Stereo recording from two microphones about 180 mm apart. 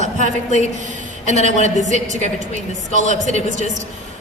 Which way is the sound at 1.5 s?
40° right (ahead or behind).